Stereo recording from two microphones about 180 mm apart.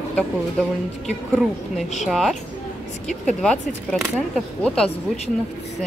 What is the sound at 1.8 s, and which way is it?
Speech, centre (ahead or behind).